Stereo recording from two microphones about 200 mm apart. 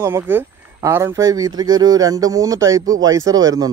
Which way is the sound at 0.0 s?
10° right (ahead or behind).